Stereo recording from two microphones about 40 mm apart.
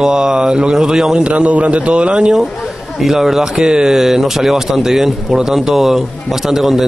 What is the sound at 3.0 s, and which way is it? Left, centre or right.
A man's voice, centre.